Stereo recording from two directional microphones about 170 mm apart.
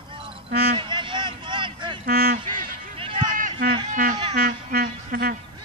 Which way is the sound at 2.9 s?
30° right (ahead or behind).